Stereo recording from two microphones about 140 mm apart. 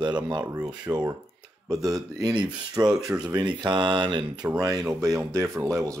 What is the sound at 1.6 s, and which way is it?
Speech, 25° right (ahead or behind).